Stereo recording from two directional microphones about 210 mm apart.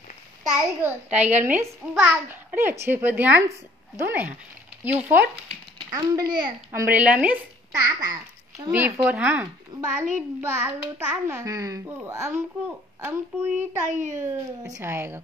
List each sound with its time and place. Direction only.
0.4 s a child's voice: 5° right (ahead or behind)